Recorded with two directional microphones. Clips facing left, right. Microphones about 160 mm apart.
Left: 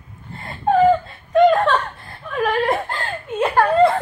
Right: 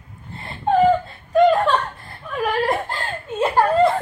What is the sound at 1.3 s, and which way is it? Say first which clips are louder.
Laughter: left 1 dB; centre (ahead or behind).